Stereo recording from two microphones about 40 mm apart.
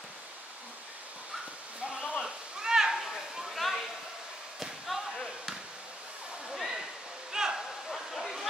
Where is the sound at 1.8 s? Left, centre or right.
Right.